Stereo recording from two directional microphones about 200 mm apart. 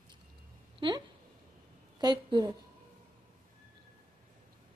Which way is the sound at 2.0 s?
20° right (ahead or behind).